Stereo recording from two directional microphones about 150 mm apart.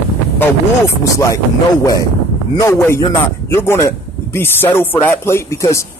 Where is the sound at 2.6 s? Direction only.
20° left (ahead or behind).